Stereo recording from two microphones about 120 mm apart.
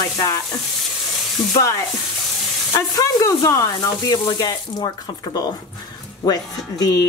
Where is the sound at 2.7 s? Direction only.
30° left (ahead or behind).